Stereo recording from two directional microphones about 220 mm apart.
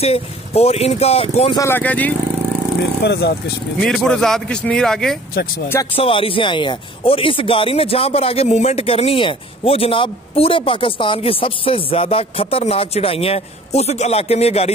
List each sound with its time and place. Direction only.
0.0 s speech: 30° left (ahead or behind)
1.6 s speech: 10° left (ahead or behind)
3.0 s speech: 50° left (ahead or behind)
3.8 s speech: 5° left (ahead or behind)
5.3 s speech: 45° left (ahead or behind)
5.9 s speech: 25° left (ahead or behind)